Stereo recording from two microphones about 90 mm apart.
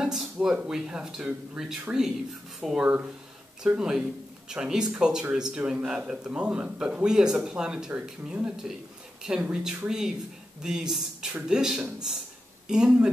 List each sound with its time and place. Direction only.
0.0 s a man's voice: 5° right (ahead or behind)
2.8 s a man's voice: 20° right (ahead or behind)